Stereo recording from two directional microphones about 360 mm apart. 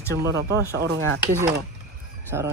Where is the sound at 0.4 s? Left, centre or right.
Right.